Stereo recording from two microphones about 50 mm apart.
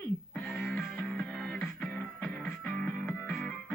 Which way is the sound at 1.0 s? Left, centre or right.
Centre.